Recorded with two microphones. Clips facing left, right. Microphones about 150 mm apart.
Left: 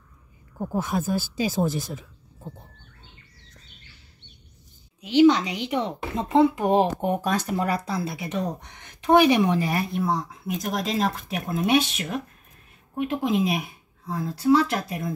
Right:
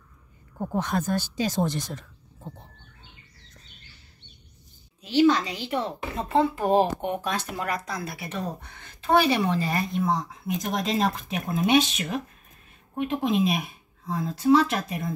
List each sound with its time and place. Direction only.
0.7 s speech: 10° left (ahead or behind)
5.0 s speech: 15° left (ahead or behind)
7.2 s speech: 35° left (ahead or behind); by 15.1 s centre (ahead or behind)